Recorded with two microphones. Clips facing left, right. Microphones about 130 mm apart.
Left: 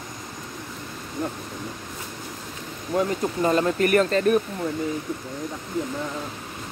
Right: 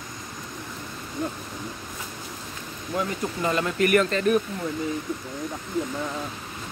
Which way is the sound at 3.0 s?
35° left (ahead or behind).